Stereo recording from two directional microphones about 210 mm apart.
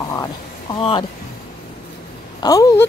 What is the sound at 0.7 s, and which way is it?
Speech, 25° left (ahead or behind).